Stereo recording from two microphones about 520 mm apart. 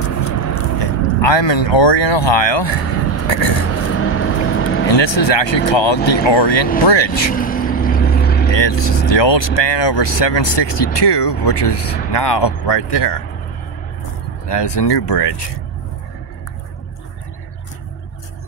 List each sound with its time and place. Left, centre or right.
0.0 s vehicle: left
0.7 s speech: left
3.8 s vehicle: left
4.8 s speech: left
7.3 s vehicle: centre
8.5 s speech: left
14.5 s speech: left